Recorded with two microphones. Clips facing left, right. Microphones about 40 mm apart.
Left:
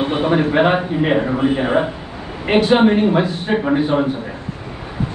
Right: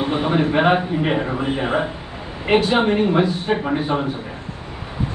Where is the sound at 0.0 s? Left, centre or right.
Left.